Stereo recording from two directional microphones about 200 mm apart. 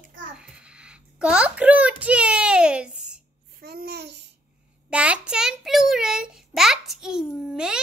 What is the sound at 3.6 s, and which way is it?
Babbling, 50° right (ahead or behind).